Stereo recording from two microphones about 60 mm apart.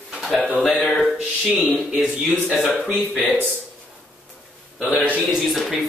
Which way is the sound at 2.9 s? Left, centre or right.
Right.